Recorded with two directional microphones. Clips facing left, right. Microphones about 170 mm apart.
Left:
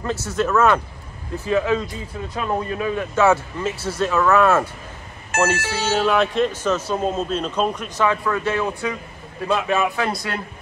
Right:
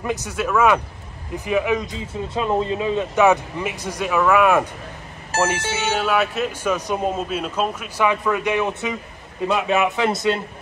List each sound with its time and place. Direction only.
0.0 s a man's voice: 15° right (ahead or behind)